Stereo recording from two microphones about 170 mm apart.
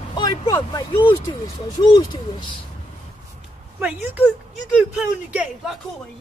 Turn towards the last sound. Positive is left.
turn(degrees=-5)  # may be behind; listen again after turning